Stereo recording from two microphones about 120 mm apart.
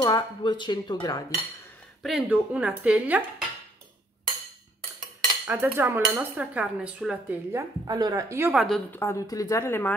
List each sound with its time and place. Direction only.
0.0 s dishes: 40° left (ahead or behind)
2.0 s speech: 5° right (ahead or behind)
5.5 s a woman's voice: 20° right (ahead or behind)
7.5 s a woman's voice: 30° right (ahead or behind)
8.5 s a woman's voice: 5° left (ahead or behind)
8.9 s speech: 25° left (ahead or behind)